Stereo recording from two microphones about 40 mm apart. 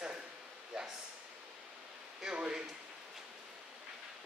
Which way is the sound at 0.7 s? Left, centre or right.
Centre.